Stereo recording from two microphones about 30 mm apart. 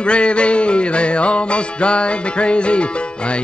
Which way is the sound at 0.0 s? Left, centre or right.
Left.